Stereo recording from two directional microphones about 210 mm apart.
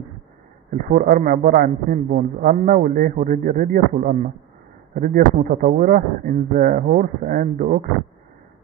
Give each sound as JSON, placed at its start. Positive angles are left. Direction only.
{"t": 0.8, "sound": "a man's voice", "side_deg": -40}